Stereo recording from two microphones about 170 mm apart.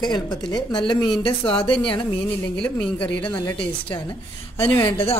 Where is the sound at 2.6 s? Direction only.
5° left (ahead or behind).